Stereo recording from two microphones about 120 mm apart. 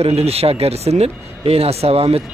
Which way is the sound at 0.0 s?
55° right (ahead or behind).